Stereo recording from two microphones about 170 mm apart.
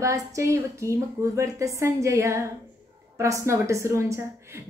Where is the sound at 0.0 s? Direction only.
15° right (ahead or behind).